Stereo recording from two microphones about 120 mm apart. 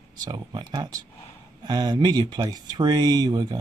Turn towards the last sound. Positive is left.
turn(degrees=-35)  # may be behind; listen again after turning